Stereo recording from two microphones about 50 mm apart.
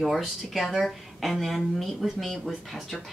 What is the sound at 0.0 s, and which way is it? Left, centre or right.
Speech, centre.